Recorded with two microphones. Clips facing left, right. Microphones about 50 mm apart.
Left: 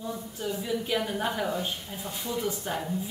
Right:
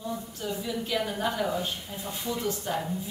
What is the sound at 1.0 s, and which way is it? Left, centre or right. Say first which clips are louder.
A woman's voice: right 1 dB; centre.